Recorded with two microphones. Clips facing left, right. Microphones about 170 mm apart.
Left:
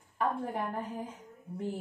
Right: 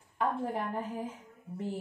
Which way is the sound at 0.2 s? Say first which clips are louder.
Even; centre (ahead or behind).